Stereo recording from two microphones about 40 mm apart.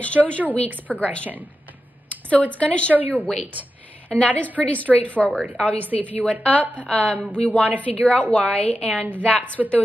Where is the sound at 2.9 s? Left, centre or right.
Right.